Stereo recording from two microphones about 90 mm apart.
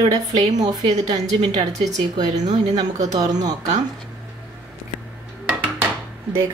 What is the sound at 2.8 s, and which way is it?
Speech, 45° right (ahead or behind).